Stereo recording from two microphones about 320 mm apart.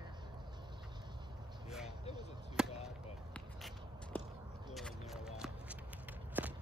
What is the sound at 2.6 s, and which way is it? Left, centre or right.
Basketball bounce, centre.